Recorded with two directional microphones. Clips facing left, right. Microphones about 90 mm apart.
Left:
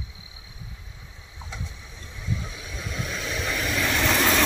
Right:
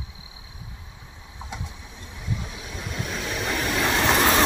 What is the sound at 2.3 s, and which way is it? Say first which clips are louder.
Vehicle: even; 20° right (ahead or behind).